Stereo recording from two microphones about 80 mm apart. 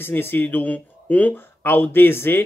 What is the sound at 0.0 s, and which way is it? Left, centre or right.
Speech, left.